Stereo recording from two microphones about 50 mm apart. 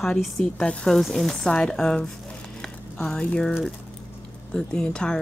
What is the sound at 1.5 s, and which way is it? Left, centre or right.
Speech, centre.